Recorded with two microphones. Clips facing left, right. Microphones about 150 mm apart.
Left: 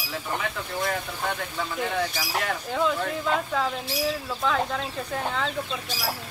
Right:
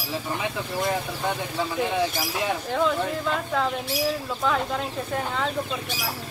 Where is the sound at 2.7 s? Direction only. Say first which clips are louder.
Right 1 dB; centre (ahead or behind).